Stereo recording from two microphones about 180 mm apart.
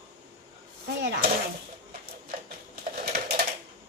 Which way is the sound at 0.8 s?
60° right (ahead or behind).